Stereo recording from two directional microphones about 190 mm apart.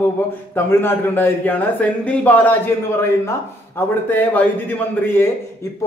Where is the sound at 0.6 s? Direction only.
10° left (ahead or behind).